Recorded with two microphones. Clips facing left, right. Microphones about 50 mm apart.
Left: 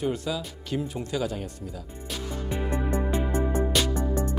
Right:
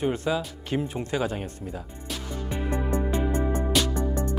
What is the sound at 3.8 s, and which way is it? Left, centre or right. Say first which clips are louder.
Music: even; left.